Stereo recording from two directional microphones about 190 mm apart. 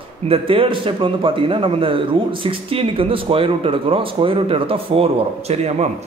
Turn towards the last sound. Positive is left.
turn(degrees=-35)  # may be behind; listen again after turning